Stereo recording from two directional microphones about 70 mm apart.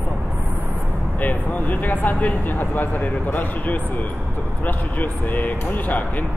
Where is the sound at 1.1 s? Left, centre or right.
Left.